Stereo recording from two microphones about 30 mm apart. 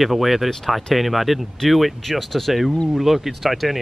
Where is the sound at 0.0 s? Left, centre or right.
Centre.